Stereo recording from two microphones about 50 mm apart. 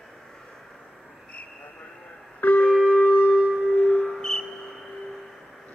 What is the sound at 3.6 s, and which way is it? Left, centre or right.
Music, left.